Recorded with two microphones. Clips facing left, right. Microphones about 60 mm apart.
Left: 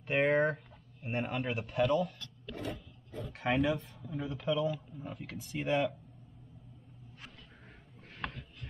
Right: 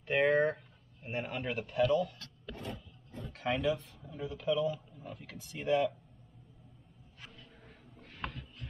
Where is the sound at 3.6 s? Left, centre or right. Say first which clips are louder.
Even; left.